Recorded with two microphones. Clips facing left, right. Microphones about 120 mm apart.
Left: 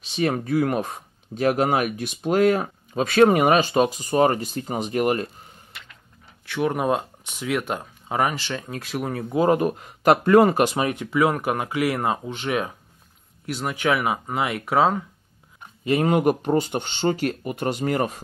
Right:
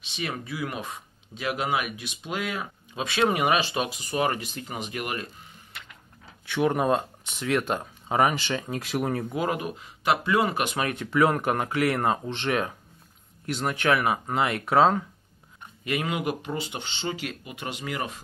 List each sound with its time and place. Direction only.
0.0 s speech: 40° left (ahead or behind)
6.4 s speech: centre (ahead or behind)
9.3 s speech: 35° left (ahead or behind)
10.8 s speech: 15° left (ahead or behind)
15.8 s speech: 35° left (ahead or behind)